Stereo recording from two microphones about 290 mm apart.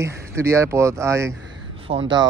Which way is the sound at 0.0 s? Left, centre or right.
Centre.